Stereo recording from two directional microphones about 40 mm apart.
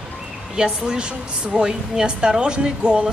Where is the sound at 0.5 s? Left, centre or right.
Centre.